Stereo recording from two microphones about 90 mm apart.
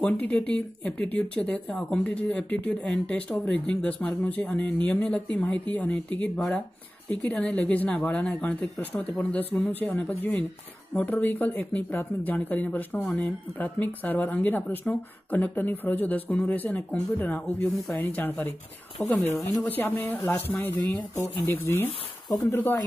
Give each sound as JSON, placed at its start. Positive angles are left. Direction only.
{"t": 0.0, "sound": "speech", "side_deg": 15}
{"t": 19.1, "sound": "speech", "side_deg": 40}
{"t": 19.6, "sound": "speech", "side_deg": 20}